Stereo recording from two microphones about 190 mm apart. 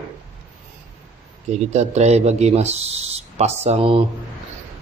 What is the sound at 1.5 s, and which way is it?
Speech, 35° right (ahead or behind).